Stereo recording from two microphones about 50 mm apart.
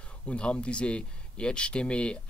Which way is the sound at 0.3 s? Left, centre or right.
Left.